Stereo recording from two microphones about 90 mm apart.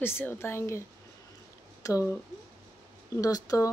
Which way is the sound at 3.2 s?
40° left (ahead or behind).